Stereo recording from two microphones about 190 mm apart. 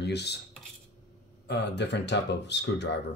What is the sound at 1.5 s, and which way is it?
Speech, 65° left (ahead or behind).